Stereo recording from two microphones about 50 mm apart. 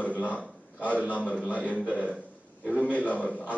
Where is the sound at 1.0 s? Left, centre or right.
Left.